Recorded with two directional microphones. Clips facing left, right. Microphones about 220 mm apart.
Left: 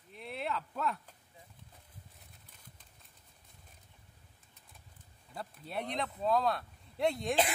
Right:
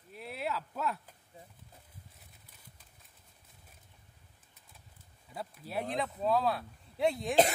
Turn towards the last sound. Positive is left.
turn(degrees=0)  # may be behind; listen again after turning